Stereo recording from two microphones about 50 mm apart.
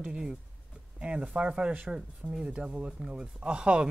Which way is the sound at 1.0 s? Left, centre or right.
Right.